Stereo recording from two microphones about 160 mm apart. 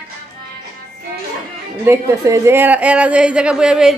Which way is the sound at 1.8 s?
20° right (ahead or behind).